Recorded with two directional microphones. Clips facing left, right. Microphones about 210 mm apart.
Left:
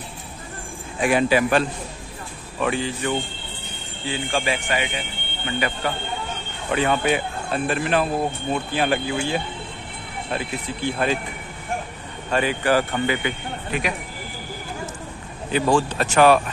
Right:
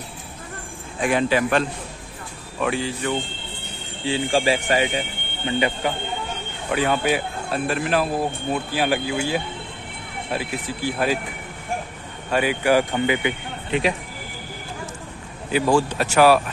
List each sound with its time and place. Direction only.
1.0 s speech: 10° left (ahead or behind)
4.0 s speech: 30° right (ahead or behind)
6.7 s speech: 5° right (ahead or behind)
12.3 s speech: 10° right (ahead or behind)
15.5 s speech: 10° right (ahead or behind)